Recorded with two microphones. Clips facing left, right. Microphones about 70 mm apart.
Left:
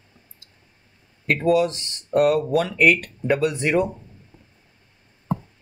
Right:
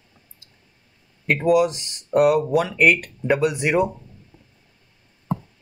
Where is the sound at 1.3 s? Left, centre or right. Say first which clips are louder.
Right 1 dB; centre.